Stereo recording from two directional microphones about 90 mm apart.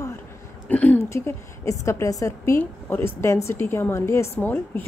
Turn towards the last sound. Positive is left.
turn(degrees=20)  # may be behind; listen again after turning